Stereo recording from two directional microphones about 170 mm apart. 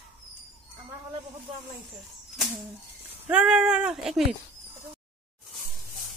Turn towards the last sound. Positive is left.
turn(degrees=0)  # may be behind; listen again after turning